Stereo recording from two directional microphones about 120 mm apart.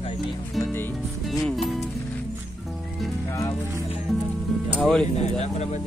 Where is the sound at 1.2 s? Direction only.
Centre (ahead or behind).